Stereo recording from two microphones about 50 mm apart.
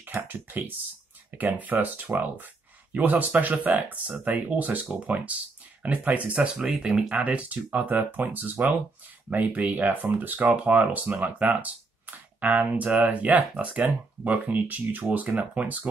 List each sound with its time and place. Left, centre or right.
0.0 s computer keyboard: right
1.3 s speech: right